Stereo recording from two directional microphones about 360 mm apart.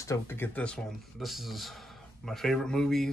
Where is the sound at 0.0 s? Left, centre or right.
Centre.